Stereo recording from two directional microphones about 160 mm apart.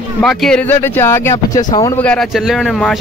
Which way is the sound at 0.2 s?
Centre (ahead or behind).